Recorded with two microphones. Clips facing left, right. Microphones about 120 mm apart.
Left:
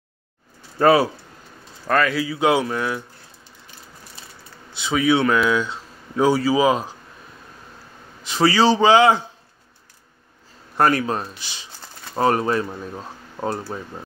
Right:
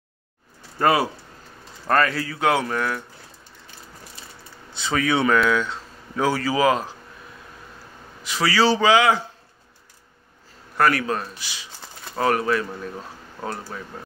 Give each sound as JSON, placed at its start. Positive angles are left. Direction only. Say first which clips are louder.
{"t": 0.7, "sound": "a man's voice", "louder": "left 4 dB", "side_deg": 5}
{"t": 4.7, "sound": "speech", "louder": "left 3 dB", "side_deg": 5}
{"t": 5.5, "sound": "speech", "louder": "left 1 dB", "side_deg": 15}
{"t": 8.2, "sound": "a man's voice", "louder": "left 3 dB", "side_deg": 25}
{"t": 10.8, "sound": "a man's voice", "louder": "left 2 dB", "side_deg": 25}
{"t": 13.7, "sound": "speech", "louder": "left 4 dB", "side_deg": 30}